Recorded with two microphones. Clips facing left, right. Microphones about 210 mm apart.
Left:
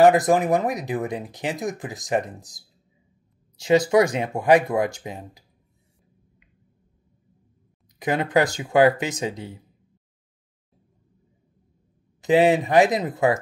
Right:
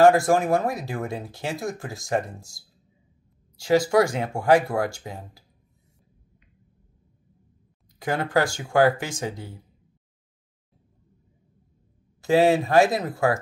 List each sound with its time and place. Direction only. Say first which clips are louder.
0.0 s speech: left 1 dB; 20° left (ahead or behind)
8.0 s speech: left 2 dB; 20° left (ahead or behind)
12.2 s speech: left 1 dB; 20° left (ahead or behind)